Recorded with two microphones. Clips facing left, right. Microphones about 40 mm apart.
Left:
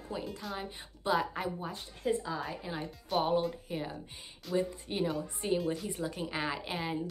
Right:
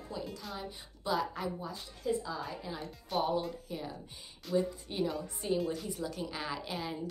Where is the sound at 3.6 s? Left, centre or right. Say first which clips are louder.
Left 3 dB; left.